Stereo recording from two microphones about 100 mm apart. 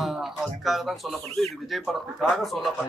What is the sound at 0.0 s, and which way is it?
A man's voice, 5° right (ahead or behind).